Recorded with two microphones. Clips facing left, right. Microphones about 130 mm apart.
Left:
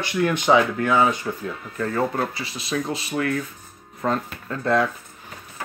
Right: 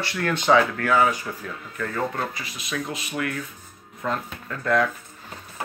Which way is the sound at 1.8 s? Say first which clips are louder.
Left 4 dB; 30° left (ahead or behind).